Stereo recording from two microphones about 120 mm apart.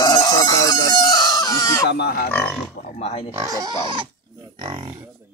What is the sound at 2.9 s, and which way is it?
Speech, 60° left (ahead or behind).